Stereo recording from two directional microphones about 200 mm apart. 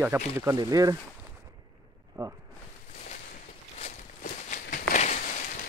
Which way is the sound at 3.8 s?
40° left (ahead or behind).